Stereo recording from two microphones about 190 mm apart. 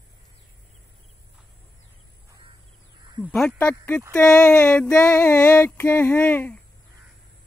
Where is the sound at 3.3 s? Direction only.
5° left (ahead or behind).